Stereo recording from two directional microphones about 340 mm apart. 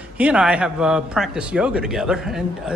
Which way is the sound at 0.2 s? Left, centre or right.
Centre.